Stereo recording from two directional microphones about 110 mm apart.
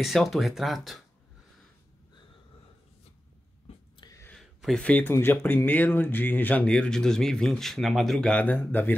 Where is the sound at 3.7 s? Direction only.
60° left (ahead or behind).